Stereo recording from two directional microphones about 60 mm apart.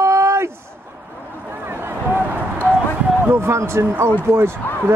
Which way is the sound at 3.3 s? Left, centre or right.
Right.